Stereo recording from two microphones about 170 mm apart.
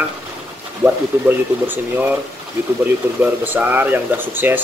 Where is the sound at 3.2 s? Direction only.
10° right (ahead or behind).